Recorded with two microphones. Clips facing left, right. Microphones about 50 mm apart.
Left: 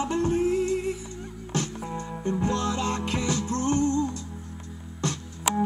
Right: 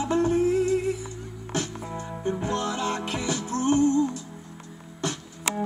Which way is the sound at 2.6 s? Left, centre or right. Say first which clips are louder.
Even; left.